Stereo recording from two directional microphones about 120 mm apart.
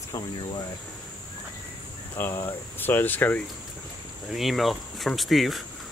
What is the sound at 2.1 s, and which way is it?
Speech, 20° left (ahead or behind).